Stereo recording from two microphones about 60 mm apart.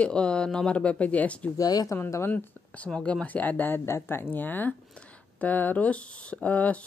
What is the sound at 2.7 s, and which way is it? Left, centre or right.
Speech, centre.